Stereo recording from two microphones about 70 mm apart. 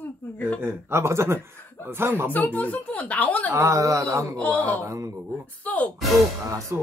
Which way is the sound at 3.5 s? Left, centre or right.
Right.